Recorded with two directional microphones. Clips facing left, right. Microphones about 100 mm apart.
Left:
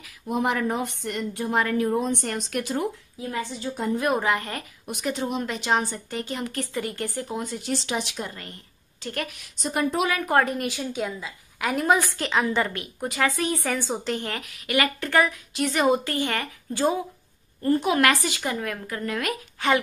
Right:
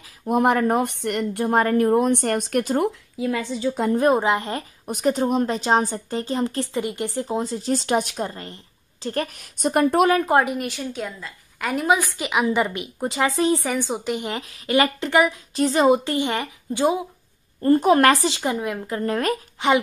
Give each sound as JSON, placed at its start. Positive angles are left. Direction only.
{"t": 0.3, "sound": "a woman's voice", "side_deg": -55}
{"t": 1.5, "sound": "speech", "side_deg": -40}
{"t": 4.0, "sound": "speech", "side_deg": -25}
{"t": 4.8, "sound": "a woman's voice", "side_deg": -40}
{"t": 7.7, "sound": "a woman's voice", "side_deg": -45}
{"t": 10.3, "sound": "a woman's voice", "side_deg": -5}
{"t": 13.7, "sound": "speech", "side_deg": -15}
{"t": 14.4, "sound": "speech", "side_deg": -30}
{"t": 15.5, "sound": "speech", "side_deg": -30}
{"t": 17.6, "sound": "a woman's voice", "side_deg": -40}
{"t": 19.6, "sound": "speech", "side_deg": -20}